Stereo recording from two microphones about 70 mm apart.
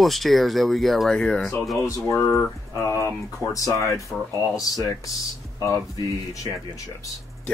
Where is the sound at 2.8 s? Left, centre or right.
Left.